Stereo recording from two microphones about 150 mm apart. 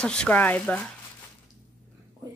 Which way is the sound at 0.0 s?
5° left (ahead or behind).